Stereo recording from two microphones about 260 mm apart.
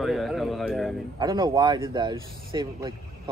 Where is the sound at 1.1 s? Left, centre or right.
Centre.